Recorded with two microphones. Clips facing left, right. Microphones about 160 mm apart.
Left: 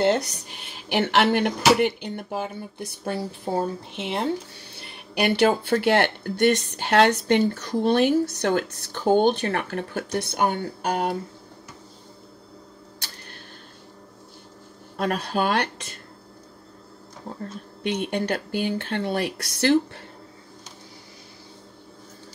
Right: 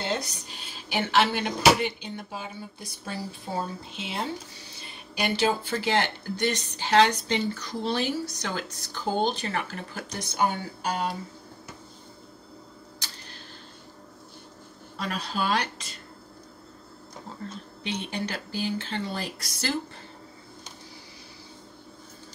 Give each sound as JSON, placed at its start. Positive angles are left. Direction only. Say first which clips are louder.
{"t": 0.0, "sound": "speech", "louder": "left 9 dB", "side_deg": 65}
{"t": 15.0, "sound": "speech", "louder": "left 6 dB", "side_deg": 55}
{"t": 17.8, "sound": "speech", "louder": "left 7 dB", "side_deg": 55}